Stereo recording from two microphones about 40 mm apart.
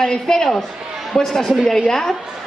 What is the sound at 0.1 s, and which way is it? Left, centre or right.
A woman's voice, centre.